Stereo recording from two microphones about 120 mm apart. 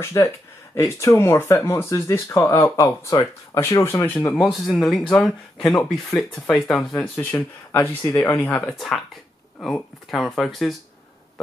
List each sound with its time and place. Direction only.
0.0 s speech: 25° left (ahead or behind)
4.4 s speech: 5° left (ahead or behind)
7.2 s speech: 15° left (ahead or behind)
8.6 s speech: centre (ahead or behind)